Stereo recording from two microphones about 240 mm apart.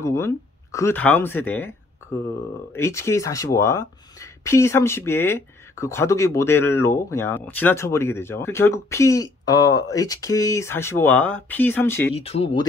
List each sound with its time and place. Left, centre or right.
0.0 s speech: centre
2.7 s speech: centre
12.2 s speech: left